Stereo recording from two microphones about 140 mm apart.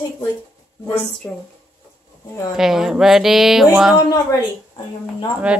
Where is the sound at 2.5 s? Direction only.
5° right (ahead or behind).